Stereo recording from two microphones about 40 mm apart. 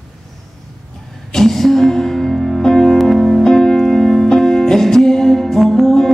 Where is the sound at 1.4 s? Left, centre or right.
Centre.